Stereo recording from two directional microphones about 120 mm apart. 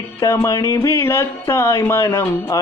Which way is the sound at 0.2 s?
25° left (ahead or behind).